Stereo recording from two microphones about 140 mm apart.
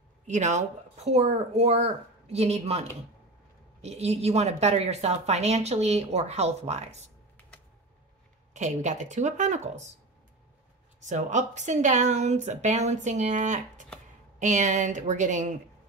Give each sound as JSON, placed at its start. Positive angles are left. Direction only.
{"t": 0.3, "sound": "a woman's voice", "side_deg": -60}
{"t": 8.5, "sound": "a woman's voice", "side_deg": -60}
{"t": 11.1, "sound": "a woman's voice", "side_deg": -60}